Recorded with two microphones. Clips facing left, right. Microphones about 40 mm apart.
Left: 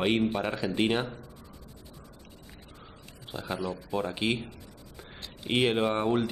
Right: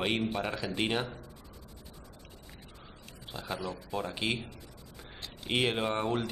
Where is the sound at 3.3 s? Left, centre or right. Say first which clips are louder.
Left 4 dB; centre.